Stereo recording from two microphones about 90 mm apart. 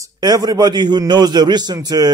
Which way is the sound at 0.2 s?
50° right (ahead or behind).